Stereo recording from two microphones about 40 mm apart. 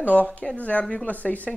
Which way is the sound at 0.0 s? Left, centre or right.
Left.